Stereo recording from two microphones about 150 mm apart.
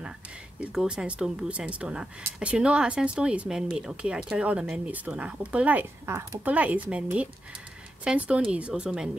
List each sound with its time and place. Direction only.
0.6 s speech: 5° right (ahead or behind)